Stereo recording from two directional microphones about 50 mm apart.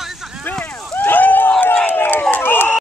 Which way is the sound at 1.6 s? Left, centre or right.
Left.